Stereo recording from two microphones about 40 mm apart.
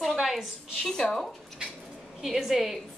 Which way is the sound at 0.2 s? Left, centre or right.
Centre.